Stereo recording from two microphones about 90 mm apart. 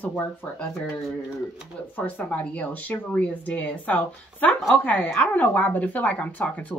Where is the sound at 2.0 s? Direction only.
20° left (ahead or behind).